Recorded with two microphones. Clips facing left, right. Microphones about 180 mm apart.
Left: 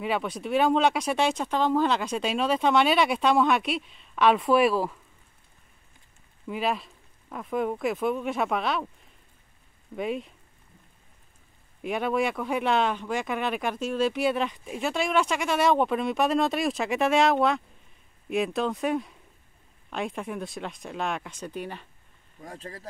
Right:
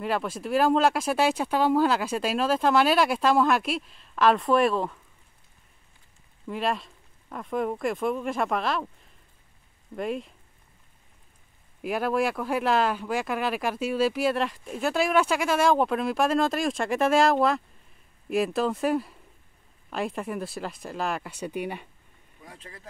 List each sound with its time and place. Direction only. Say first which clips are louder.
0.0 s speech: even; centre (ahead or behind)
6.4 s speech: even; 5° left (ahead or behind)
9.9 s speech: even; centre (ahead or behind)
11.8 s speech: right 1 dB; 5° right (ahead or behind)
22.4 s speech: left 6 dB; 40° left (ahead or behind)